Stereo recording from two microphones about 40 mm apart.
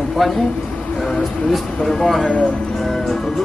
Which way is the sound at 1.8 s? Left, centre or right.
Centre.